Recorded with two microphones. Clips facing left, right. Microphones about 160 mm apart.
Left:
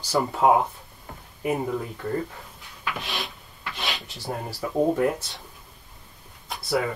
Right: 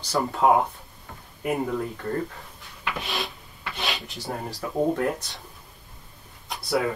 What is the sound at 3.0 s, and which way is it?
Speech, centre (ahead or behind).